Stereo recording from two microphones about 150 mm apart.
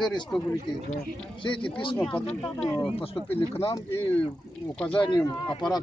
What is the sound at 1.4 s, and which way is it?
Speech, 35° left (ahead or behind).